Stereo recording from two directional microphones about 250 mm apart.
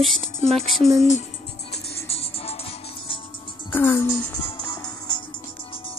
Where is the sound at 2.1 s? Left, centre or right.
Left.